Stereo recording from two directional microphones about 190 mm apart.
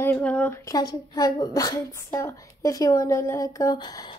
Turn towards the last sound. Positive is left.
turn(degrees=20)  # may be behind; listen again after turning